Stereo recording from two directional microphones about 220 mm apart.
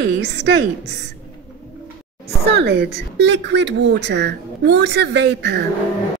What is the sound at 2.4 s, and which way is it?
Speech, 50° right (ahead or behind).